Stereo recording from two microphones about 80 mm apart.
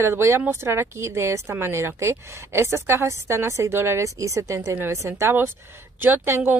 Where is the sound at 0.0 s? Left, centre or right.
Right.